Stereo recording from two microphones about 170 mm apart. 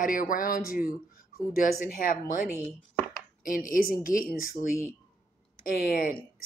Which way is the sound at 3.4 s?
55° left (ahead or behind).